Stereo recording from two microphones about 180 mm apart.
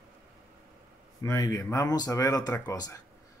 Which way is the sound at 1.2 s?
20° left (ahead or behind).